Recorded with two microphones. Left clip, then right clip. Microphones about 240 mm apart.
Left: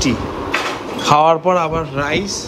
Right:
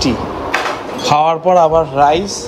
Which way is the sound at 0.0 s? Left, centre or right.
Centre.